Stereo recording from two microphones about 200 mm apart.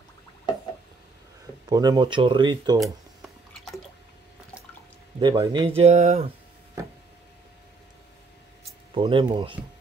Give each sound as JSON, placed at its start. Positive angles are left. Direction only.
{"t": 1.7, "sound": "speech", "side_deg": -20}
{"t": 5.2, "sound": "speech", "side_deg": -25}
{"t": 8.9, "sound": "speech", "side_deg": -25}